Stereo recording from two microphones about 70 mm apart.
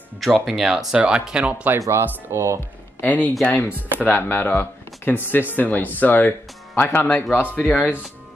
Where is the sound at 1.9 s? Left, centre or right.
Right.